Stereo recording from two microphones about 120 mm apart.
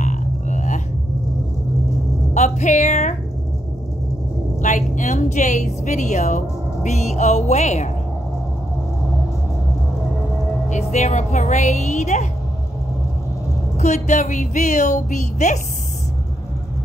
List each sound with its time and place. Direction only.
0.0 s music: 90° left
2.3 s music: 70° left (ahead or behind)
4.6 s a woman's voice: 90° left; by 7.9 s 70° left (ahead or behind)
10.7 s a woman's voice: 65° left (ahead or behind)
13.7 s a woman's voice: 75° left (ahead or behind)